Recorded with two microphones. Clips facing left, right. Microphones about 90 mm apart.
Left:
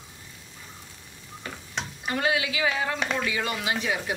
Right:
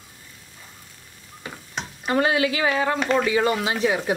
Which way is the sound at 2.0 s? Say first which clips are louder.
Right 6 dB; 40° right (ahead or behind).